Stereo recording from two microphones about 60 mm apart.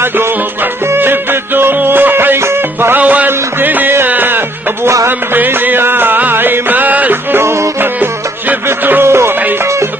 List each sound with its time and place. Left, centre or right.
0.9 s music: right
3.0 s music: right
7.3 s music: right
7.8 s music: right
9.0 s music: right